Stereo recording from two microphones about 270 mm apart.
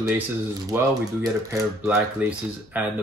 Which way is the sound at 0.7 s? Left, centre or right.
Centre.